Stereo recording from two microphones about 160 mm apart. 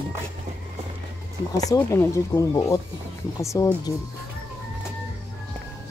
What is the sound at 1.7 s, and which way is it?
Speech, 20° left (ahead or behind).